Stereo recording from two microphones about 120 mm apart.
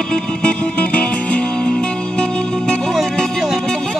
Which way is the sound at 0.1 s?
10° left (ahead or behind).